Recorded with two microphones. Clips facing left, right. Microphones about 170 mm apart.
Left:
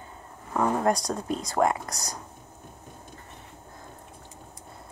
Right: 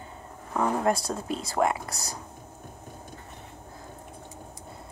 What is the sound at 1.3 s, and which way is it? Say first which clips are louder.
Speech: left 1 dB; 30° right (ahead or behind).